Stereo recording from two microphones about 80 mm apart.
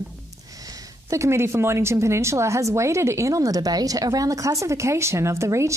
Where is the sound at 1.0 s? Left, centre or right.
Right.